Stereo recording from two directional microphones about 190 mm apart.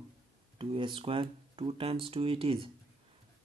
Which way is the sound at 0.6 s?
25° right (ahead or behind).